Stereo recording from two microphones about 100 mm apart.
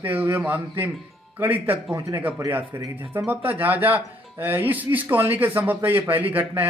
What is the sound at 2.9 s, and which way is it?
Speech, 20° right (ahead or behind).